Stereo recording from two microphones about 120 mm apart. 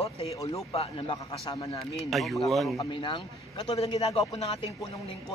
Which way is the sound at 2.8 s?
45° left (ahead or behind).